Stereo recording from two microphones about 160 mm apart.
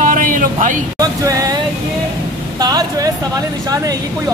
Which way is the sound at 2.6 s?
25° right (ahead or behind).